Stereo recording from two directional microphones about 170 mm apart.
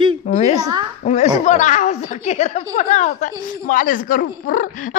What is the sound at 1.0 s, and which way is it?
A woman's voice, 40° left (ahead or behind).